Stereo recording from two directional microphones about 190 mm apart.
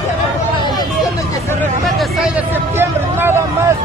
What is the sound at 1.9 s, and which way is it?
Hubbub, centre (ahead or behind).